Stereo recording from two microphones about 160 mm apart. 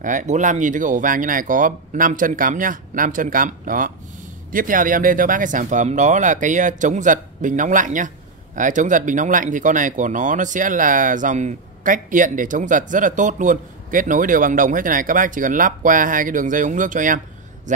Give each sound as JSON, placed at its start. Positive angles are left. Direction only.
{"t": 0.0, "sound": "speech", "side_deg": -50}